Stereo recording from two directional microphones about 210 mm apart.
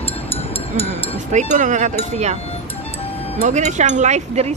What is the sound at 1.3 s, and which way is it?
Speech, 35° right (ahead or behind).